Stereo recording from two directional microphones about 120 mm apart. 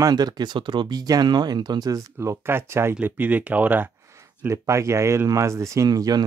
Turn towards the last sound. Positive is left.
turn(degrees=-35)  # may be behind; listen again after turning